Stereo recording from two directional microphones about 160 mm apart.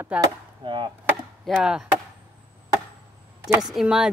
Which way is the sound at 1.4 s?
5° right (ahead or behind).